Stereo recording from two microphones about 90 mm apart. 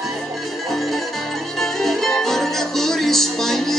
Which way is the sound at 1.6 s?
5° left (ahead or behind).